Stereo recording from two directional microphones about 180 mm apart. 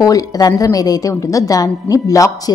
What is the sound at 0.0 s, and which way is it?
A woman's voice, 20° left (ahead or behind).